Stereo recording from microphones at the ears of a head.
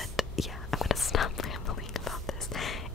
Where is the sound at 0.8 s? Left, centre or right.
Left.